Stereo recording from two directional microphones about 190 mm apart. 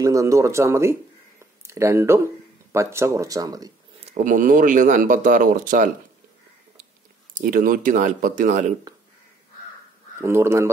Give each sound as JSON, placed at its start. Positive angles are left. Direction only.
{"t": 0.0, "sound": "speech", "side_deg": -15}
{"t": 1.4, "sound": "a sound", "side_deg": -15}
{"t": 2.7, "sound": "speech", "side_deg": -15}
{"t": 4.1, "sound": "speech", "side_deg": -45}
{"t": 7.3, "sound": "speech", "side_deg": -45}
{"t": 10.2, "sound": "speech", "side_deg": -15}